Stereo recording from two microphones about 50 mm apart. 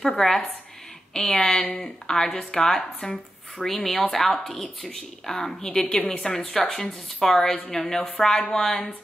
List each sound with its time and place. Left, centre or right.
0.0 s a woman's voice: centre
3.6 s a woman's voice: centre; by 6.3 s left
6.3 s a woman's voice: centre